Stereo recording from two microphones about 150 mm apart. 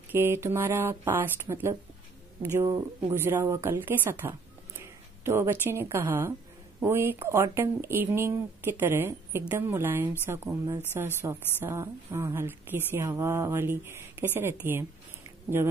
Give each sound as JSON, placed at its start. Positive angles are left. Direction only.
{"t": 0.1, "sound": "a woman's voice", "side_deg": -15}